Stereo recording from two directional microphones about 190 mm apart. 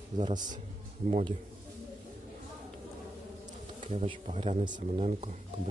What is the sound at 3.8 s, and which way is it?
Speech, 35° right (ahead or behind).